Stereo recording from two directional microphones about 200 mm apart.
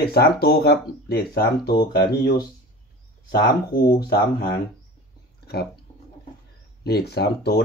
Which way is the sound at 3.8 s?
55° left (ahead or behind).